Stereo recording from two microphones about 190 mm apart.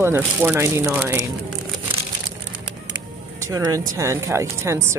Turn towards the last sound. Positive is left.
turn(degrees=-15)  # may be behind; listen again after turning